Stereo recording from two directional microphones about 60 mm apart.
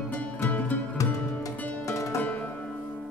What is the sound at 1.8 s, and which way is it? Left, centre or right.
Music, left.